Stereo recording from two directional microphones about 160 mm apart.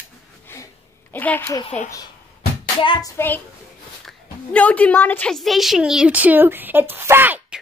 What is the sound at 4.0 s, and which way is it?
A woman's voice, 5° left (ahead or behind).